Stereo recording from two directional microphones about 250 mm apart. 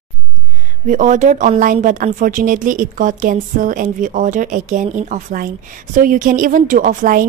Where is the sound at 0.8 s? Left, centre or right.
Right.